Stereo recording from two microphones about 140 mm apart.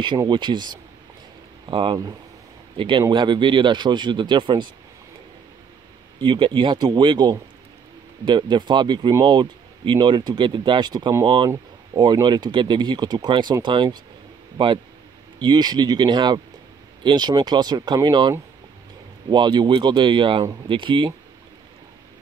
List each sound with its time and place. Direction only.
0.2 s speech: 30° right (ahead or behind)
3.0 s speech: 35° right (ahead or behind)
6.1 s speech: 35° right (ahead or behind)
19.3 s speech: 30° right (ahead or behind)